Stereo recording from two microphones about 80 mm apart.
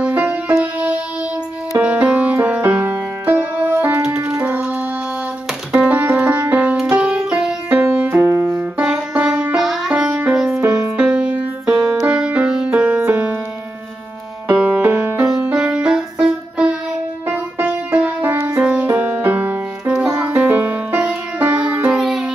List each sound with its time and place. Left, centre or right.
0.0 s music: centre
5.7 s music: centre
7.7 s music: right
9.1 s music: centre
10.6 s music: right
11.0 s music: centre
14.5 s music: centre
18.2 s music: right
21.9 s music: centre